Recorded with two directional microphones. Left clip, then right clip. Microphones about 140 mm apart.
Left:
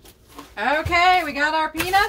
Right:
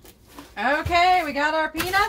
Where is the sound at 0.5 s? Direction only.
35° right (ahead or behind).